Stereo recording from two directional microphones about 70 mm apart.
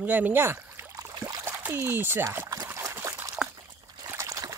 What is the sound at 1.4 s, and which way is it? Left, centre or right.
Speech, right.